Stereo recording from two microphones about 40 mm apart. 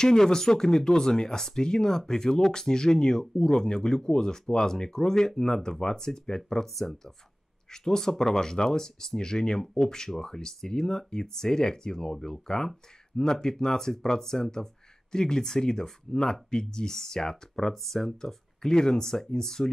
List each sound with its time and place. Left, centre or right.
0.0 s speech: centre
6.7 s speech: centre